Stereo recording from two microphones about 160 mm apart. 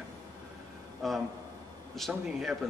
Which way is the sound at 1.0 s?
Centre (ahead or behind).